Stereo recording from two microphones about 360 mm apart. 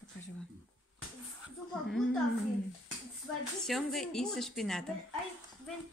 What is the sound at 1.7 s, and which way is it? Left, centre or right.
Speech, centre.